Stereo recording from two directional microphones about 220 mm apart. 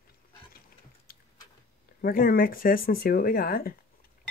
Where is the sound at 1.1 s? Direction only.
45° left (ahead or behind).